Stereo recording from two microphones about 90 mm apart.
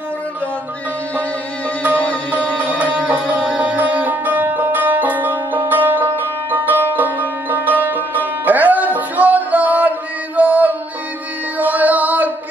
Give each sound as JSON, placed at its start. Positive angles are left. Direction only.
{"t": 2.5, "sound": "music", "side_deg": -15}